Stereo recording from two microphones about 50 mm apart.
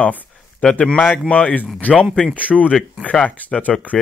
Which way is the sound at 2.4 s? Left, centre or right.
Right.